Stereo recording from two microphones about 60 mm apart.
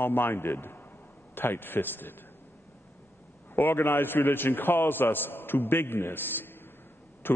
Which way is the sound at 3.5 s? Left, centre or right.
Left.